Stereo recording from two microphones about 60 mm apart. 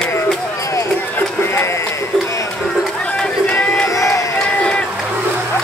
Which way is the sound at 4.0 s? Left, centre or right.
Left.